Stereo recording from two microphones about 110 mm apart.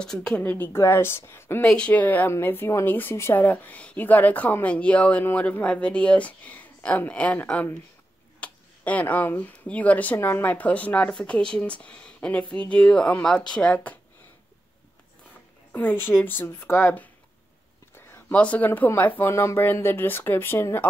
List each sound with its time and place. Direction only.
0.0 s speech: 5° left (ahead or behind)
0.4 s speech: 15° left (ahead or behind)
1.6 s a woman's voice: 10° left (ahead or behind)
8.4 s tick-tock: 15° left (ahead or behind)
9.4 s a woman's voice: 15° left (ahead or behind)
15.7 s speech: 15° left (ahead or behind)